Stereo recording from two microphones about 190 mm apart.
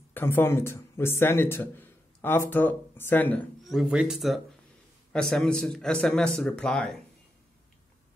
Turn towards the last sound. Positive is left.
turn(degrees=5)  # may be behind; listen again after turning